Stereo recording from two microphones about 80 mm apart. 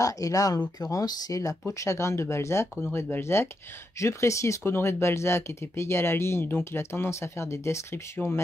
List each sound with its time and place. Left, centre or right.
0.0 s speech: left